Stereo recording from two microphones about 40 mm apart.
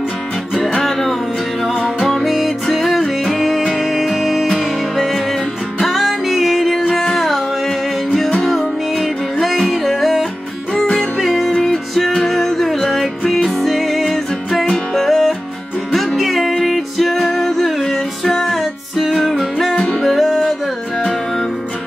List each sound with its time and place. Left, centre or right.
0.8 s music: centre
19.7 s music: centre
20.0 s music: centre
21.0 s music: centre